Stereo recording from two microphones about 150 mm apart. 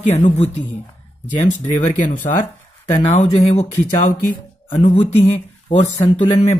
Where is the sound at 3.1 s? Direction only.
50° left (ahead or behind).